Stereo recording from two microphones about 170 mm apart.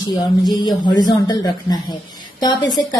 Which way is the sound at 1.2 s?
25° left (ahead or behind).